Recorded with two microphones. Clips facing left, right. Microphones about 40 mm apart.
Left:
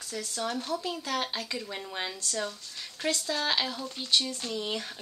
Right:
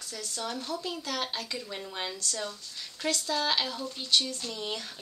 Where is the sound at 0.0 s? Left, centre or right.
Left.